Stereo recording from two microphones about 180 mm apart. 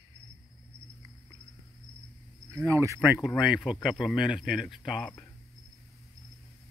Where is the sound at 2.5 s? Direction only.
15° right (ahead or behind); by 5.1 s centre (ahead or behind).